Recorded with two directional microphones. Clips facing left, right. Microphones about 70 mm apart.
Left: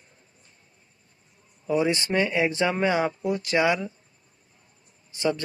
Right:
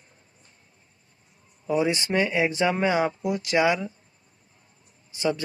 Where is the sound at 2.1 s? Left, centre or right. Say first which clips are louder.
Right 1 dB; centre.